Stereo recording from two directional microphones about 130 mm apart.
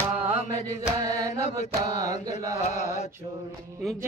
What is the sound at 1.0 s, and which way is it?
Mantra, 30° right (ahead or behind).